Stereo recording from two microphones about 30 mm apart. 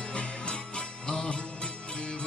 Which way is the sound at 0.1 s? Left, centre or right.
Left.